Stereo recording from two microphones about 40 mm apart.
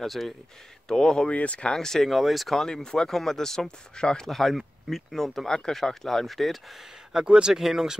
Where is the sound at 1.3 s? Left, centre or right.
Left.